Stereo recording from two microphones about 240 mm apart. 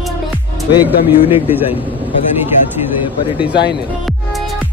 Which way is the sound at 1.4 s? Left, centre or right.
Centre.